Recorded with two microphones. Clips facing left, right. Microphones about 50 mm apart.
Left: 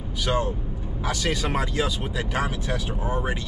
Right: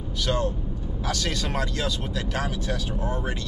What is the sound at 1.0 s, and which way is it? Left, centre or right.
Speech, centre.